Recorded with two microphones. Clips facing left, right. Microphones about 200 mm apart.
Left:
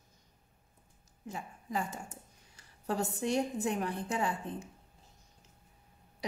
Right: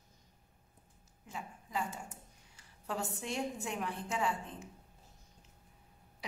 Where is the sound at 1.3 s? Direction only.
40° left (ahead or behind).